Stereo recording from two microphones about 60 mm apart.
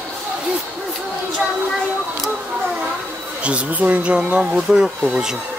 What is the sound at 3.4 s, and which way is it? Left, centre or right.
Speech, right.